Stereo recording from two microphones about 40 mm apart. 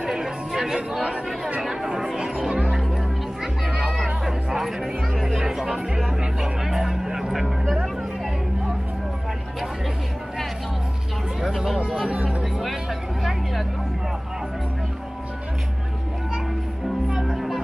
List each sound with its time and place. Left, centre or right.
0.0 s music: centre
0.7 s speech: centre
1.6 s chatter: centre
3.6 s music: centre
7.6 s music: centre
11.4 s music: centre
12.1 s music: right
13.2 s a sound: centre
17.1 s music: centre